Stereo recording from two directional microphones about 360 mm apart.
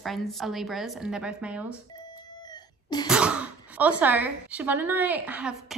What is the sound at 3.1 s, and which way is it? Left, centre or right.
A woman's voice, centre.